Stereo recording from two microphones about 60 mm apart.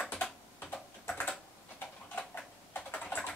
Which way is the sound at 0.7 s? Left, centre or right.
Left.